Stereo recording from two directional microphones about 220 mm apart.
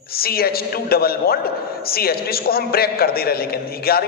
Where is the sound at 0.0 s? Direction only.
45° left (ahead or behind).